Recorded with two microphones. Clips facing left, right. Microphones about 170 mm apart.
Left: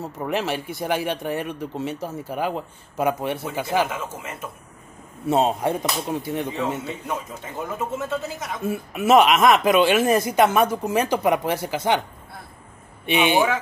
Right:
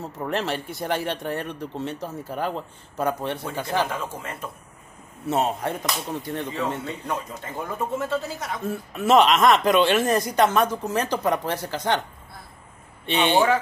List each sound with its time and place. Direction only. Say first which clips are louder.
0.0 s speech: left 2 dB; 5° left (ahead or behind)
5.3 s speech: left 4 dB; 20° left (ahead or behind)
6.8 s speech: even; 5° left (ahead or behind)
13.0 s speech: left 1 dB; 10° left (ahead or behind)